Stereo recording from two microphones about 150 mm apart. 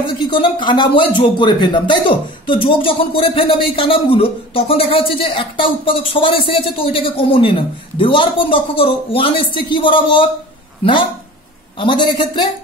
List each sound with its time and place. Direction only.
0.0 s speech: 35° left (ahead or behind)